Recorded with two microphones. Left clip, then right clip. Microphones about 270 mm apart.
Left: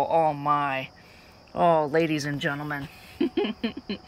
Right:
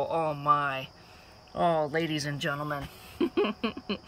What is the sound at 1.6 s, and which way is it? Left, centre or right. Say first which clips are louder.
Speech: left 5 dB; centre.